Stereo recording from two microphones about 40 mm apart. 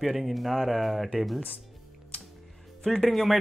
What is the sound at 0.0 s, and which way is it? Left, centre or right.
Speech, centre.